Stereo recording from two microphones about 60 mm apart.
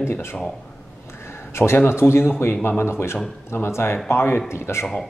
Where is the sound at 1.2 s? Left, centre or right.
Left.